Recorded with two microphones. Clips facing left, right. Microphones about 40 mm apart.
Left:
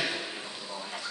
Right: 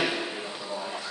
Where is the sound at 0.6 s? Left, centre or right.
Right.